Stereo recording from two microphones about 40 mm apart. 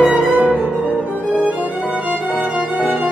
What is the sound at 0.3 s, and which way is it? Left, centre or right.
Music, right.